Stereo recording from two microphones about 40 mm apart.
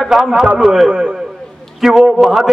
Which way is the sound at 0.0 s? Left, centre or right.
Centre.